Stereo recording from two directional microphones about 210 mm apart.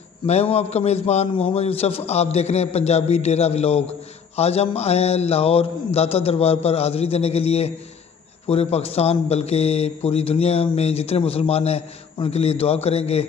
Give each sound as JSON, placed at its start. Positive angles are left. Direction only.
{"t": 0.3, "sound": "a man's voice", "side_deg": 30}